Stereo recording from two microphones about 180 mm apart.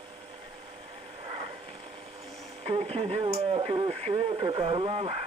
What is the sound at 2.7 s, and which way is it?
Speech, 35° right (ahead or behind).